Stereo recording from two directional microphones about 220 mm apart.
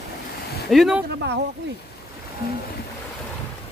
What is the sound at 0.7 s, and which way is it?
Speech, centre (ahead or behind).